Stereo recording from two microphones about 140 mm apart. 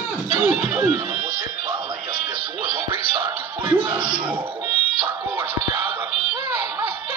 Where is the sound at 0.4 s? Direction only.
10° right (ahead or behind).